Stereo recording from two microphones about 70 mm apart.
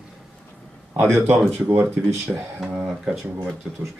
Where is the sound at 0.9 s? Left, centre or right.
Right.